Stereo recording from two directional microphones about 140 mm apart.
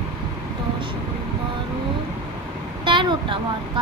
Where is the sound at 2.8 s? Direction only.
35° right (ahead or behind).